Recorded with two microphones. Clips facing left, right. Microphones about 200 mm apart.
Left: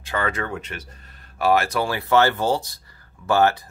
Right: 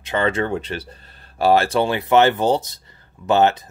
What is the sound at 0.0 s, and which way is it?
Speech, 25° right (ahead or behind).